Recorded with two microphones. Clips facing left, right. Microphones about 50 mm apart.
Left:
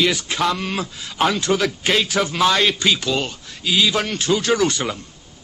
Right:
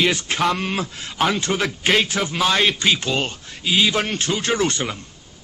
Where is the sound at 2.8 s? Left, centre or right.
Right.